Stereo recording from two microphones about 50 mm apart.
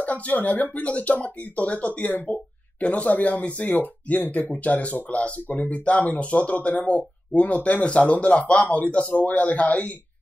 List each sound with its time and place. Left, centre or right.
0.0 s speech: left